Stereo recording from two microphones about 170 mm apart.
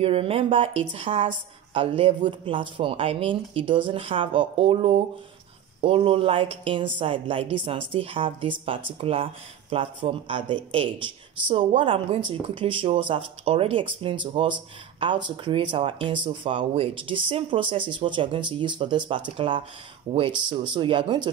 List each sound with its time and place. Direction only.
0.0 s a woman's voice: 35° right (ahead or behind)